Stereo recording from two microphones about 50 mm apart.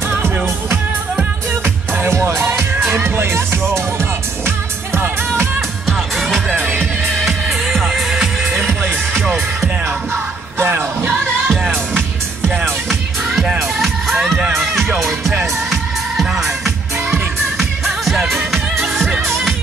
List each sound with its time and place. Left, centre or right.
1.5 s music: right
4.0 s music: right
5.9 s music: centre
10.6 s music: right
13.6 s music: centre